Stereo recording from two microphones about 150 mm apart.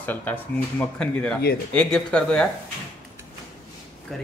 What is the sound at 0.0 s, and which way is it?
A man's voice, 10° left (ahead or behind).